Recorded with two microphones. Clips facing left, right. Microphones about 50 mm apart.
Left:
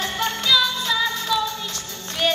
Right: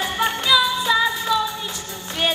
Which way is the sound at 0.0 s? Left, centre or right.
Centre.